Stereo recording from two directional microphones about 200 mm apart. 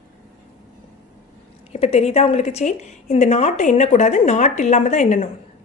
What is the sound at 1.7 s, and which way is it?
A woman's voice, 30° left (ahead or behind).